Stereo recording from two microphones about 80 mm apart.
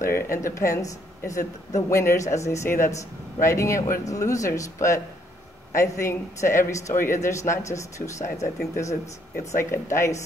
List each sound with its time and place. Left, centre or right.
0.4 s a woman's voice: left